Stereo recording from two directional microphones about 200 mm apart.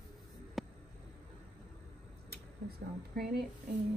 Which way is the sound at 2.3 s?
50° right (ahead or behind).